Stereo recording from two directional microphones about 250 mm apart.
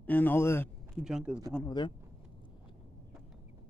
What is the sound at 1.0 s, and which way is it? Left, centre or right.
Speech, centre.